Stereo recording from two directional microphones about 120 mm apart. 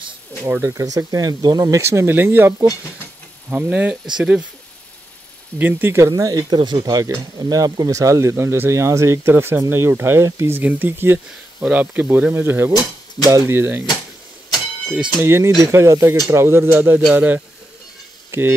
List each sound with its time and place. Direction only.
0.5 s speech: 20° right (ahead or behind)
5.6 s speech: 15° right (ahead or behind)
15.2 s speech: 20° right (ahead or behind)